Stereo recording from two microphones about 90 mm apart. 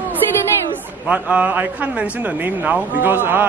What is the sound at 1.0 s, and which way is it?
A man's voice, 15° right (ahead or behind).